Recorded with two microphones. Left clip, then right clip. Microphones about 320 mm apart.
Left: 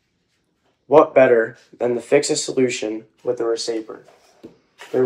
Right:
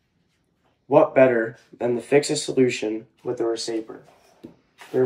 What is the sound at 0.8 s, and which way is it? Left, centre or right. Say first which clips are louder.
Speech: left 4 dB; centre.